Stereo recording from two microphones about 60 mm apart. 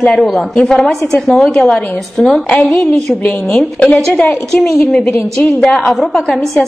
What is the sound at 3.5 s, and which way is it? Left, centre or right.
Speech, centre.